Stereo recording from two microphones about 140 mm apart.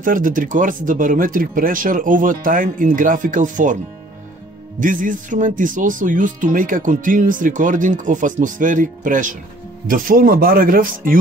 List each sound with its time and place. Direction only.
0.0 s speech: 75° right (ahead or behind)
9.8 s speech: 80° right